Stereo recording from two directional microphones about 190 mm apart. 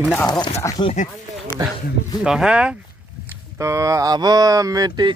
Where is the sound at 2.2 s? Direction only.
5° right (ahead or behind).